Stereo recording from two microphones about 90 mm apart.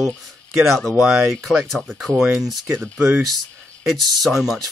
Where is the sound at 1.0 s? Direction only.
10° right (ahead or behind).